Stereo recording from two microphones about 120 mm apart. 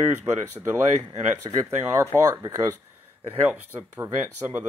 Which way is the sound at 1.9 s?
25° right (ahead or behind).